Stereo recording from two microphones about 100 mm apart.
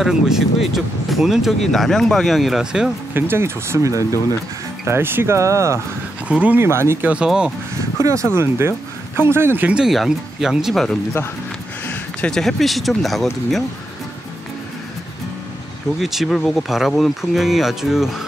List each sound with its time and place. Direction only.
0.0 s speech: 5° right (ahead or behind)
3.2 s speech: 25° right (ahead or behind)
6.2 s speech: 15° right (ahead or behind)
7.2 s speech: 10° right (ahead or behind)
8.0 s speech: 30° right (ahead or behind)
9.7 s speech: 5° right (ahead or behind)
12.2 s speech: 5° left (ahead or behind)
16.0 s speech: centre (ahead or behind)